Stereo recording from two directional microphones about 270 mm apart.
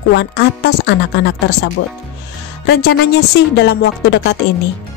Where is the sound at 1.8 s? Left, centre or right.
Left.